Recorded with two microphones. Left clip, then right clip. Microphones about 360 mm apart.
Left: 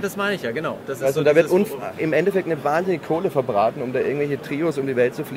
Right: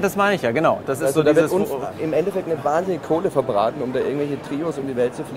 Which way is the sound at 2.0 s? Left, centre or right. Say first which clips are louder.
Left 2 dB; left.